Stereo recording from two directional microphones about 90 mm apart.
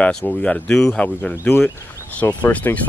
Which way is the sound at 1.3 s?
25° left (ahead or behind).